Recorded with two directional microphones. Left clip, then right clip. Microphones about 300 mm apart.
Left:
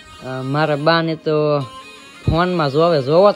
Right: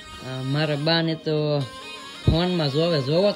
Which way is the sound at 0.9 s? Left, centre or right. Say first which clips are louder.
Left 5 dB; centre.